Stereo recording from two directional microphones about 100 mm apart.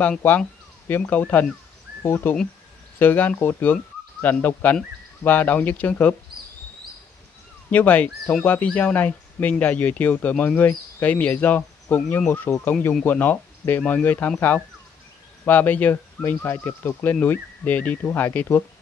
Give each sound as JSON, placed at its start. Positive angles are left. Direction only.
{"t": 0.2, "sound": "speech", "side_deg": 20}
{"t": 7.7, "sound": "speech", "side_deg": 15}
{"t": 15.4, "sound": "speech", "side_deg": 20}